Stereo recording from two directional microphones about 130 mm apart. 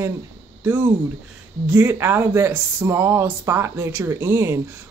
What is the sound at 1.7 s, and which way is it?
Speech, 20° right (ahead or behind).